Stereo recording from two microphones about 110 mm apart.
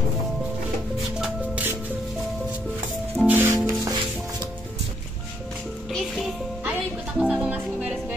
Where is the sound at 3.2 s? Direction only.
20° right (ahead or behind).